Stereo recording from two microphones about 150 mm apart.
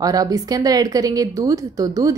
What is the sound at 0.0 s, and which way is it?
Speech, 25° right (ahead or behind).